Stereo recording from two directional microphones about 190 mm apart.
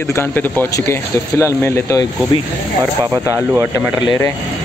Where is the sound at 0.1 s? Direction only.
10° left (ahead or behind).